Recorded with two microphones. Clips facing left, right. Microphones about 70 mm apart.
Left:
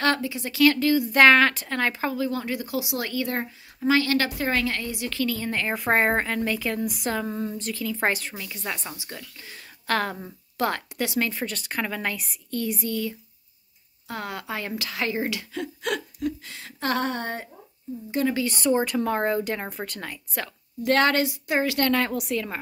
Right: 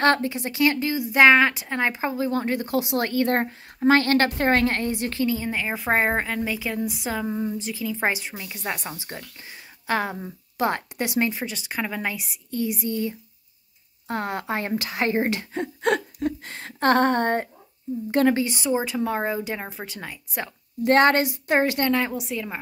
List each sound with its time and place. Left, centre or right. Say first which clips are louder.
0.0 s a woman's voice: right 4 dB; right
0.5 s a woman's voice: left 4 dB; right
1.0 s a woman's voice: right 2 dB; centre; by 5.1 s right
5.1 s a woman's voice: even; right
5.4 s a woman's voice: even; centre
8.9 s a woman's voice: right 2 dB; right
9.4 s speech: right 1 dB; centre
10.7 s a woman's voice: right 2 dB; right
18.4 s speech: left 1 dB; centre
20.8 s a woman's voice: right 3 dB; right
22.3 s speech: left 2 dB; centre